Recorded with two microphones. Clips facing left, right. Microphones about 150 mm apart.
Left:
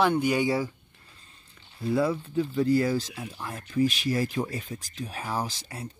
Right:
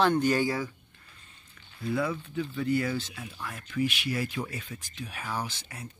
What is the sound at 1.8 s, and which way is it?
Speech, 30° left (ahead or behind).